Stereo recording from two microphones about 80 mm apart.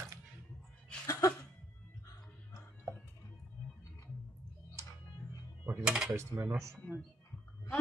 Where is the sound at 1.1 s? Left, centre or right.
Left.